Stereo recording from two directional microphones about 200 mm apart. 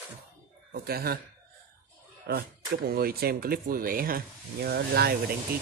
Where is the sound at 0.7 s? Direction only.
50° right (ahead or behind).